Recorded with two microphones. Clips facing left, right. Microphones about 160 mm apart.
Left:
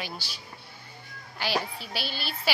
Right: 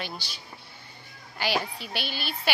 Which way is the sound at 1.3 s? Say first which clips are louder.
Right 1 dB; centre (ahead or behind).